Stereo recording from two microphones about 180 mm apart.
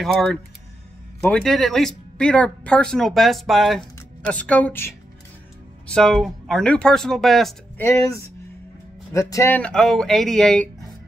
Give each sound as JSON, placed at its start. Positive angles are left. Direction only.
{"t": 0.0, "sound": "a woman's voice", "side_deg": 0}
{"t": 7.8, "sound": "a woman's voice", "side_deg": 15}